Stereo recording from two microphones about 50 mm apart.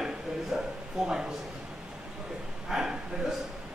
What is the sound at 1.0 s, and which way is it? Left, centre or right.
Speech, centre.